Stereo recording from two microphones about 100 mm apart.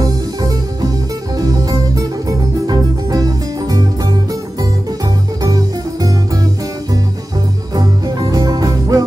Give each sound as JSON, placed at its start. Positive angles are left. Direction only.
{"t": 0.0, "sound": "music", "side_deg": -35}
{"t": 5.4, "sound": "music", "side_deg": -35}
{"t": 7.7, "sound": "music", "side_deg": -40}